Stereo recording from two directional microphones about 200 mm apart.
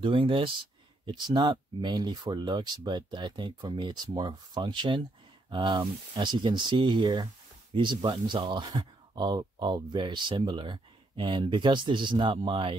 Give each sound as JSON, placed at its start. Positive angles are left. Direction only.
{"t": 0.0, "sound": "speech", "side_deg": -25}